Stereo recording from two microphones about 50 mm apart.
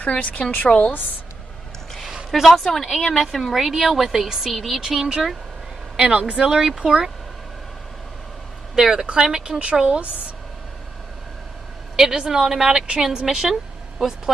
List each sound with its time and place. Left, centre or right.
0.0 s a woman's voice: left
2.0 s a sound: centre
2.4 s a woman's voice: centre; by 6.4 s right
6.4 s a woman's voice: centre
8.7 s a woman's voice: centre
12.0 s a woman's voice: centre